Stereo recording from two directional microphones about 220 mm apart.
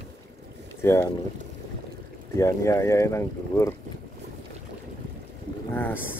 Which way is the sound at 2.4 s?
15° left (ahead or behind).